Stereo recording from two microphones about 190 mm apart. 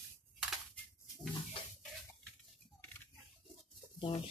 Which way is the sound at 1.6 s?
25° left (ahead or behind).